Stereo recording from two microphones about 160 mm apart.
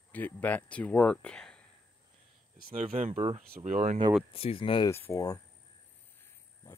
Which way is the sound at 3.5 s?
55° right (ahead or behind).